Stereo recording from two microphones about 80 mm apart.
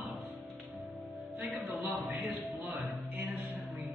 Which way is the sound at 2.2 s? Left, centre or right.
Centre.